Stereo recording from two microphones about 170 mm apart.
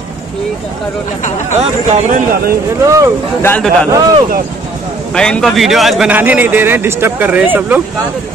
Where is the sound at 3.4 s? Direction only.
10° left (ahead or behind).